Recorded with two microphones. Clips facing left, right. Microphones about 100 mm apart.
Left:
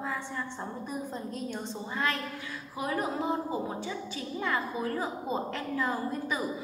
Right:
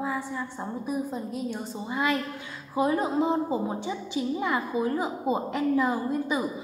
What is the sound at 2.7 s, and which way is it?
A woman's voice, 25° right (ahead or behind).